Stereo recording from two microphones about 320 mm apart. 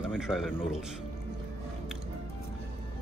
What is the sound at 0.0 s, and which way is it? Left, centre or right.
Speech, centre.